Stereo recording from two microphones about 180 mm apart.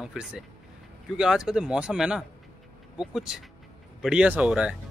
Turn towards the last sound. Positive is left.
turn(degrees=-5)  # may be behind; listen again after turning